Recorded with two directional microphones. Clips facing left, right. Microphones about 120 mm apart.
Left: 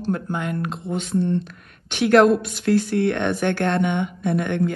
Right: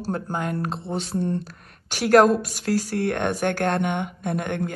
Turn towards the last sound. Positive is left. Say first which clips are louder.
# left 5 dB
turn(degrees=-45)  # may be behind; listen again after turning